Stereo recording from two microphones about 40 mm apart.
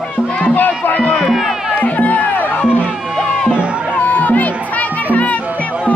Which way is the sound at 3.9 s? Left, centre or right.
Left.